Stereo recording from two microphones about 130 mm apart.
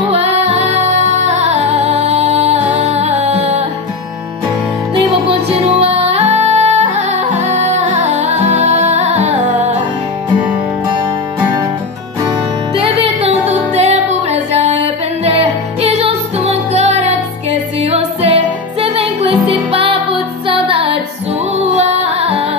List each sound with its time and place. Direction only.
0.1 s music: 55° right (ahead or behind)
4.9 s music: 45° right (ahead or behind); by 9.8 s 65° right (ahead or behind)
12.7 s music: 45° right (ahead or behind)
21.7 s music: 55° right (ahead or behind)